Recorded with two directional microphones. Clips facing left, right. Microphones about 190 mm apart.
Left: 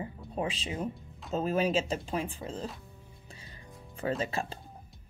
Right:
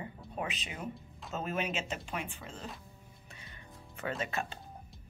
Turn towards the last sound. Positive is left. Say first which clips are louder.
# left 3 dB
turn(degrees=30)  # may be behind; listen again after turning